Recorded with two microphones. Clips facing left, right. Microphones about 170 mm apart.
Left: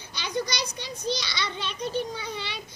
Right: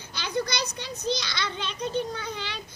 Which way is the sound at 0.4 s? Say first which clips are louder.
Right 1 dB; 10° left (ahead or behind).